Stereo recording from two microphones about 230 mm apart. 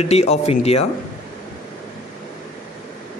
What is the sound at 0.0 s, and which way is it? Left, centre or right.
Speech, left.